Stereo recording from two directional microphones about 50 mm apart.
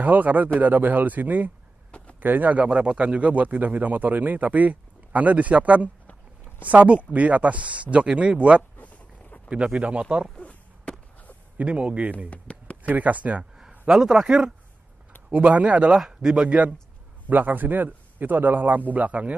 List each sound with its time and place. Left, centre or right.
0.0 s a man's voice: right
1.9 s a sound: left
2.1 s speech: right
2.6 s a man's voice: right
8.7 s a sound: left
9.5 s a man's voice: right
10.4 s a sound: left
11.5 s a man's voice: right
12.3 s a sound: left
12.8 s a man's voice: right
13.4 s a man's voice: centre
15.2 s a man's voice: right
15.9 s speech: centre
16.4 s a man's voice: right